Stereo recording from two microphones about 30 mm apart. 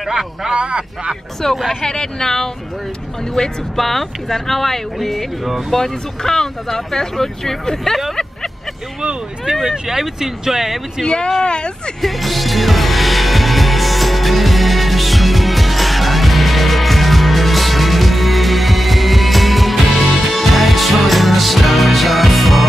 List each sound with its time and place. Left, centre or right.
0.0 s speech: centre
0.5 s speech: right
1.4 s speech: centre
9.5 s speech: right
11.0 s speech: centre
11.4 s speech: left
12.0 s music: centre